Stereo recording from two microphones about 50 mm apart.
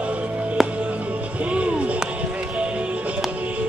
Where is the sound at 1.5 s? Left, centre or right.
Right.